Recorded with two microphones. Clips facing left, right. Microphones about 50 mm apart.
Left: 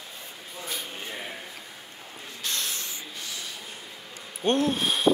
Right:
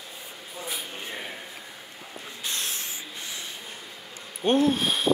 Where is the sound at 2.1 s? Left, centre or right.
Centre.